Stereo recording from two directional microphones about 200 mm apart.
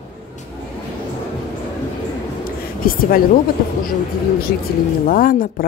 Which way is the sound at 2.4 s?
45° left (ahead or behind).